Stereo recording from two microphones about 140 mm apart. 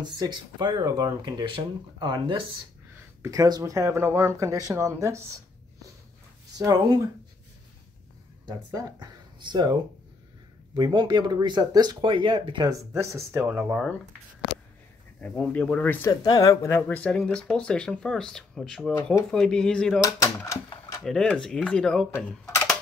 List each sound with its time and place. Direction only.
0.0 s speech: 30° right (ahead or behind)
6.6 s speech: 30° right (ahead or behind)
8.5 s speech: 25° right (ahead or behind)
12.6 s speech: 20° right (ahead or behind)
15.1 s speech: 10° left (ahead or behind)
16.1 s speech: 25° left (ahead or behind)
16.7 s speech: 10° left (ahead or behind)
20.0 s speech: 25° left (ahead or behind)
21.0 s speech: 5° left (ahead or behind)